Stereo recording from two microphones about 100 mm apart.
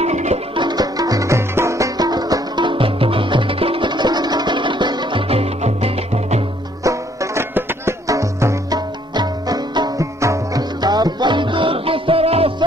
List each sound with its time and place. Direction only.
0.6 s music: 45° right (ahead or behind)
5.3 s music: 85° right
6.8 s music: 30° right (ahead or behind)
8.7 s music: 45° right (ahead or behind); by 12.5 s 75° right (ahead or behind)